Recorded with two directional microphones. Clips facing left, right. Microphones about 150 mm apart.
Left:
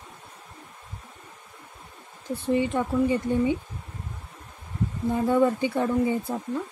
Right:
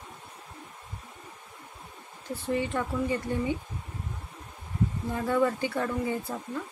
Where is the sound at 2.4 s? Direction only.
20° left (ahead or behind).